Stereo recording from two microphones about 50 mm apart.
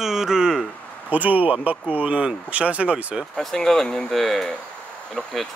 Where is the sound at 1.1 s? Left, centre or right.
Right.